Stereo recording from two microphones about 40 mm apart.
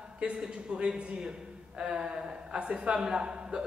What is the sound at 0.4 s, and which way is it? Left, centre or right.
A man's voice, right.